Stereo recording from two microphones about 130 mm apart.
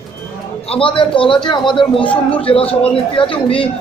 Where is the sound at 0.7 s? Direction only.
40° left (ahead or behind).